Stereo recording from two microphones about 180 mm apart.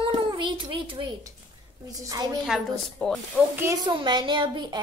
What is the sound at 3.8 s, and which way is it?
Speech, 25° right (ahead or behind).